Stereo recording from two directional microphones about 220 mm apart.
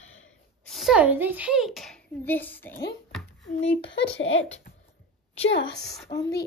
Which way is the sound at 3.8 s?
55° left (ahead or behind).